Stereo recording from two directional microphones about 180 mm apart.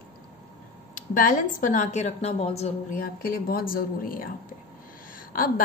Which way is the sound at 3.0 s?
55° left (ahead or behind).